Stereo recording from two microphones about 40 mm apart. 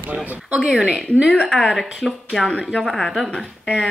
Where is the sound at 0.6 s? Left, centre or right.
Centre.